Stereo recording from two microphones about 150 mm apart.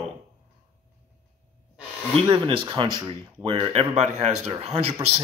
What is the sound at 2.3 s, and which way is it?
Speech, 35° right (ahead or behind).